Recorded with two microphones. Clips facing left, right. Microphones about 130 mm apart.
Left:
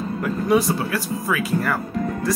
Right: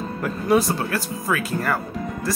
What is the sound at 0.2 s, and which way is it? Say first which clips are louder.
Speech: even; centre (ahead or behind).